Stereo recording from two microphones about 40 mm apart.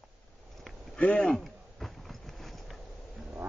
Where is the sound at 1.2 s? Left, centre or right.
Centre.